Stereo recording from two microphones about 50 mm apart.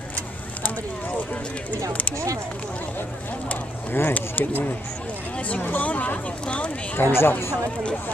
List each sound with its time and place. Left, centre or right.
3.9 s speech: left
7.0 s a woman's voice: left